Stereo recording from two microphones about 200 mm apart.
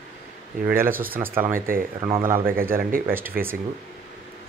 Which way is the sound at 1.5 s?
45° right (ahead or behind).